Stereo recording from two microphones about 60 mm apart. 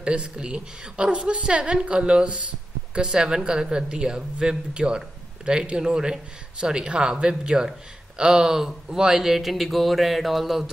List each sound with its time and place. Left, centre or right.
0.0 s a woman's voice: centre